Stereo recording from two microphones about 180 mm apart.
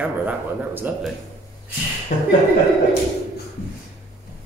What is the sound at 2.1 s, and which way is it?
Speech, 45° left (ahead or behind).